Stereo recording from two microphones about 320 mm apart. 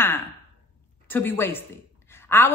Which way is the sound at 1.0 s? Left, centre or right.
Centre.